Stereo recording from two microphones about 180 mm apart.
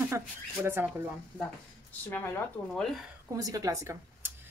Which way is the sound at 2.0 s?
10° left (ahead or behind).